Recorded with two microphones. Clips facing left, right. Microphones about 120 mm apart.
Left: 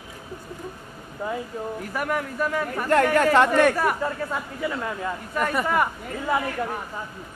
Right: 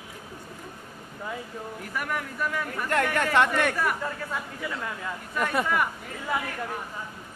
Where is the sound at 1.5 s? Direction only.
35° left (ahead or behind).